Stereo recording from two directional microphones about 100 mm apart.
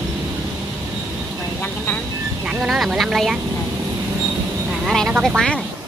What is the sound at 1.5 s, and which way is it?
Speech, 20° left (ahead or behind).